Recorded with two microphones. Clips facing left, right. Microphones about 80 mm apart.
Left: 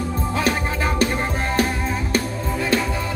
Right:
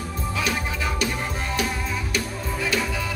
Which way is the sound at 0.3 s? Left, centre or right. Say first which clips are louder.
Left 4 dB; left.